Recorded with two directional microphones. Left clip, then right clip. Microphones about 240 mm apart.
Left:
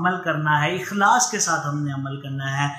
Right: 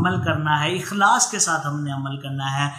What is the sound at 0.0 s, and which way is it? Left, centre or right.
A man's voice, centre.